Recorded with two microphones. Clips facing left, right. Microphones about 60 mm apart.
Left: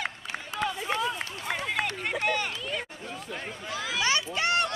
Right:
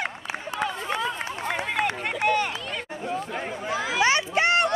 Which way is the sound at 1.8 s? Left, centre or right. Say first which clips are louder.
Right 5 dB; centre.